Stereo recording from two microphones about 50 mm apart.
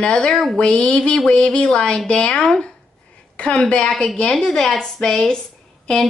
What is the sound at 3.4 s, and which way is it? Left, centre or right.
Speech, left.